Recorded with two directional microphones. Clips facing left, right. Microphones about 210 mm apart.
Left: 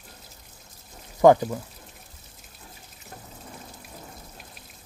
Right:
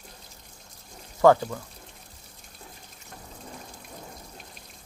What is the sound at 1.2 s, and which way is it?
Speech, 20° left (ahead or behind).